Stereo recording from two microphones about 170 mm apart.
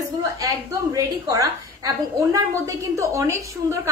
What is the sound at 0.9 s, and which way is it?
A woman's voice, 20° right (ahead or behind).